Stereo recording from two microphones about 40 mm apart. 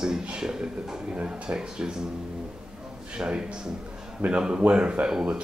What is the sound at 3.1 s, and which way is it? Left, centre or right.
Speech, right.